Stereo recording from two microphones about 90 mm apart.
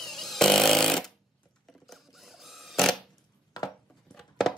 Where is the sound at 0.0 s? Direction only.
5° left (ahead or behind).